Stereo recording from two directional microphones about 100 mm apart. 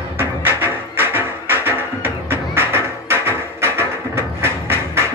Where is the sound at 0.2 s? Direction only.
20° right (ahead or behind).